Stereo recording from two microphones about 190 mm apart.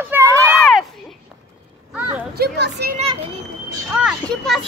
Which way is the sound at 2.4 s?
55° right (ahead or behind).